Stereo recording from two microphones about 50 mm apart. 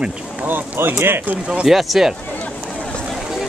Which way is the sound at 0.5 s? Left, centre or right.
Right.